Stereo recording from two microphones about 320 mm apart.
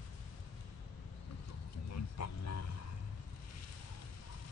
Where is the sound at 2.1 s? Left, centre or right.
Left.